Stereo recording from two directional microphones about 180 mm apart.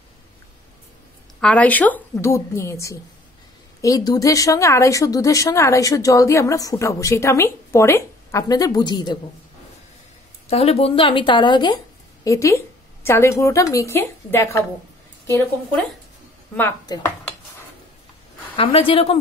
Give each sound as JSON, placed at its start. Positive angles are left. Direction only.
{"t": 1.4, "sound": "speech", "side_deg": 5}
{"t": 10.5, "sound": "a woman's voice", "side_deg": 35}
{"t": 16.8, "sound": "a woman's voice", "side_deg": 20}
{"t": 18.6, "sound": "speech", "side_deg": 30}